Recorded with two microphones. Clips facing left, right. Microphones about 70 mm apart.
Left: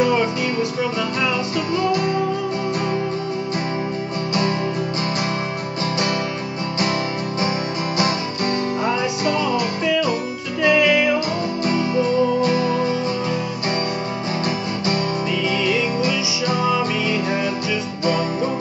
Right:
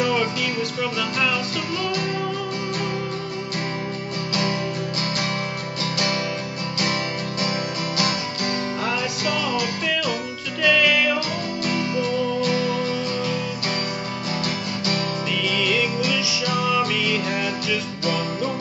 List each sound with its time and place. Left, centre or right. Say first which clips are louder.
0.0 s music: left 4 dB; left
1.8 s music: left 7 dB; left
4.3 s music: left 3 dB; left
8.0 s music: left 4 dB; left
14.4 s music: left 4 dB; left